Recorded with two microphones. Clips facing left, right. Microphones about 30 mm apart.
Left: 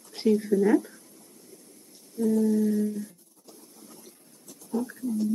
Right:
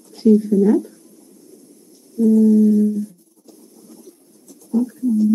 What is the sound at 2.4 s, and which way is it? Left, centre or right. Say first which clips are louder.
Speech: right 11 dB; centre.